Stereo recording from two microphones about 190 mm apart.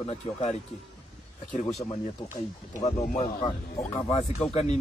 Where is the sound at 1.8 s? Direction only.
35° left (ahead or behind).